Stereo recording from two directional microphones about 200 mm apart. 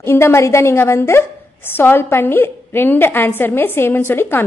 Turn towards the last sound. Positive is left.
turn(degrees=10)  # may be behind; listen again after turning